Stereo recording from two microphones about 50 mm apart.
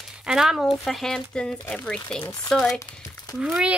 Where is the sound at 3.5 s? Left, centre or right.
Right.